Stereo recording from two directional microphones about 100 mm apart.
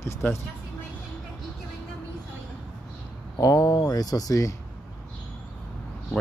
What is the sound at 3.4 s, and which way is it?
Speech, 35° left (ahead or behind).